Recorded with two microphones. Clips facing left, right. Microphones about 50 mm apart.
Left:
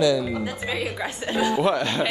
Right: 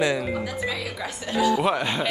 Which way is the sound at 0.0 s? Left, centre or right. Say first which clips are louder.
Left 3 dB; right.